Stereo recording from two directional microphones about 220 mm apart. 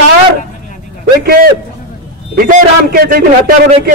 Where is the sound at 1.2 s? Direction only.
45° right (ahead or behind).